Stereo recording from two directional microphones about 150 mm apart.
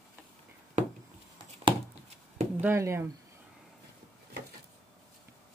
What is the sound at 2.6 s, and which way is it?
Speech, 15° right (ahead or behind).